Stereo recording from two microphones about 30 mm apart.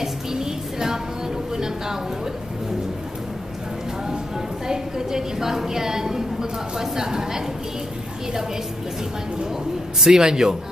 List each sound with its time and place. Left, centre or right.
0.0 s music: centre
4.6 s a sound: centre
6.8 s a woman's voice: centre
10.0 s a woman's voice: right